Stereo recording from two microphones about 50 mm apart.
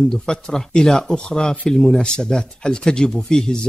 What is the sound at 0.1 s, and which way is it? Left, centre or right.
A man's voice, centre.